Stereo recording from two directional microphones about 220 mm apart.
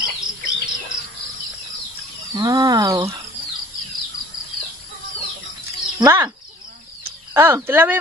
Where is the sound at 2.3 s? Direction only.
15° right (ahead or behind).